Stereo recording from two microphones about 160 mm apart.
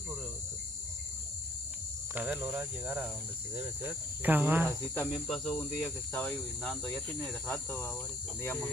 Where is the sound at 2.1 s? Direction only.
10° right (ahead or behind).